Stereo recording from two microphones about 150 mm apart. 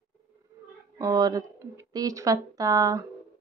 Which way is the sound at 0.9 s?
25° right (ahead or behind).